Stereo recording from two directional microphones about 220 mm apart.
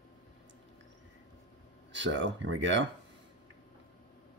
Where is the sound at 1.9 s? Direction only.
55° right (ahead or behind).